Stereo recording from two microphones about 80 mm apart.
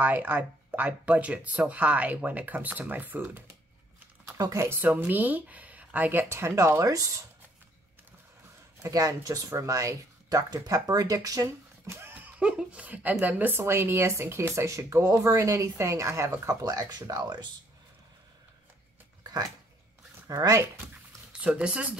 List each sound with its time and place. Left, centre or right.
0.0 s speech: right
4.4 s speech: right
4.8 s speech: right
8.8 s speech: right
12.1 s speech: centre; by 17.5 s right
20.2 s speech: right
21.3 s speech: centre